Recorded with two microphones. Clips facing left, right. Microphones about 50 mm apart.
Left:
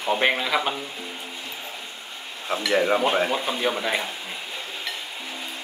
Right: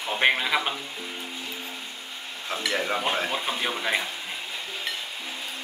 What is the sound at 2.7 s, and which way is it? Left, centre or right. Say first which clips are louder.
Speech: left 7 dB; centre.